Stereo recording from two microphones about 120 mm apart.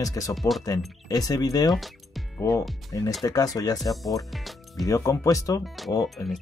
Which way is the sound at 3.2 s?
30° left (ahead or behind).